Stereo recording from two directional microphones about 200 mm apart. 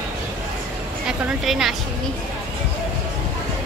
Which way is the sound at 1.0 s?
Centre (ahead or behind).